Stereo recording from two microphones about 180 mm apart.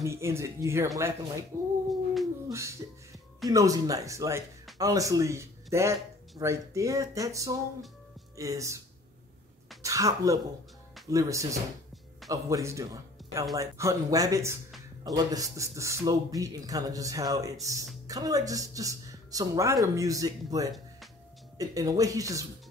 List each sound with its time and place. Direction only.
0.0 s speech: 15° right (ahead or behind)
9.8 s speech: 20° right (ahead or behind)